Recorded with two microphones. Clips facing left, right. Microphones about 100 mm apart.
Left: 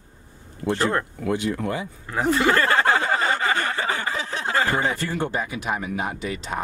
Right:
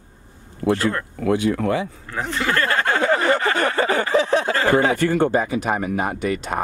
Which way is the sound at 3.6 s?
65° right (ahead or behind).